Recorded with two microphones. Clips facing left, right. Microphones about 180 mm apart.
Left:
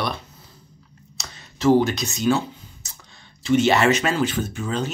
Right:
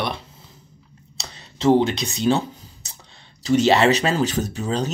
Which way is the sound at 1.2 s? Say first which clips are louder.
Even; 30° right (ahead or behind).